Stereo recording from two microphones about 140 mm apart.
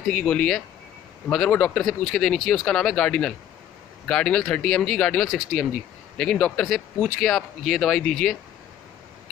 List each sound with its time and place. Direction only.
0.1 s speech: 5° left (ahead or behind)